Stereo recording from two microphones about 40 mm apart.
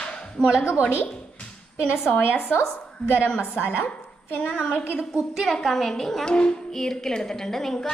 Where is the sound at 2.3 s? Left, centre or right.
Left.